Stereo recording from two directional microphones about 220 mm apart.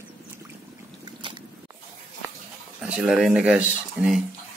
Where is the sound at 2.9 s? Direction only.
5° right (ahead or behind).